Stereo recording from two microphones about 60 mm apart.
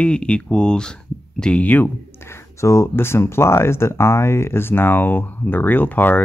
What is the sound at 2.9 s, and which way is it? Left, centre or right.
Speech, left.